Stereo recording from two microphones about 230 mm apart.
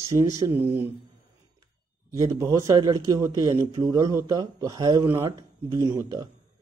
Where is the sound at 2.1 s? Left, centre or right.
Centre.